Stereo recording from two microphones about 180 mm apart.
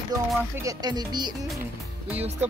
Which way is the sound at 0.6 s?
20° right (ahead or behind).